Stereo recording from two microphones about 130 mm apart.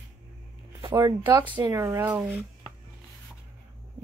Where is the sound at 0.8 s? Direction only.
25° right (ahead or behind).